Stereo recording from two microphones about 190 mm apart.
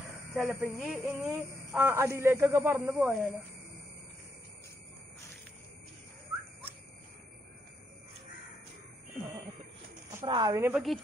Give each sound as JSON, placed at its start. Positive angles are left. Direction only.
{"t": 0.3, "sound": "speech", "side_deg": -5}
{"t": 10.2, "sound": "a woman's voice", "side_deg": -25}
{"t": 10.5, "sound": "speech", "side_deg": -10}